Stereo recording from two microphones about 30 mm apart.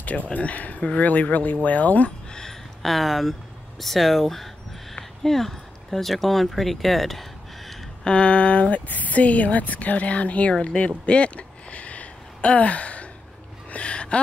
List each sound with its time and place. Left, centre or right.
0.3 s speech: left
1.3 s speech: left
2.8 s speech: centre
8.0 s speech: left
8.8 s speech: left
10.9 s a sound: left
13.7 s music: left